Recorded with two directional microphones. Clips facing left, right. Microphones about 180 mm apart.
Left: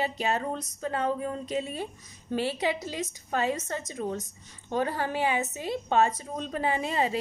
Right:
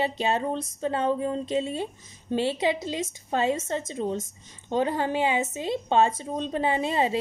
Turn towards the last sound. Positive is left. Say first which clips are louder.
# right 3 dB
turn(degrees=-25)  # may be behind; listen again after turning